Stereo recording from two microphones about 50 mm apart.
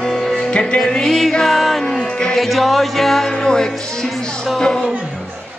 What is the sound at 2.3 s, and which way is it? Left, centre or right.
Music, centre.